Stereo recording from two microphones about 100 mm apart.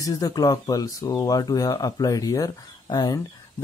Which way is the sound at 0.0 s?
40° left (ahead or behind).